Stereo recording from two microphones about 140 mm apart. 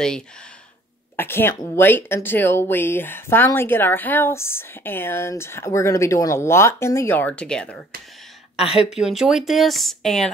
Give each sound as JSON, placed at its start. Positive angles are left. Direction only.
{"t": 1.1, "sound": "a woman's voice", "side_deg": 15}
{"t": 8.7, "sound": "speech", "side_deg": -5}